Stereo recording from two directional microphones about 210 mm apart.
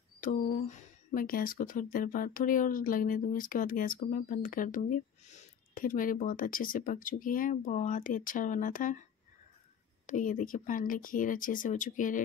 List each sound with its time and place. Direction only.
0.2 s speech: 35° left (ahead or behind)
10.0 s speech: 40° left (ahead or behind)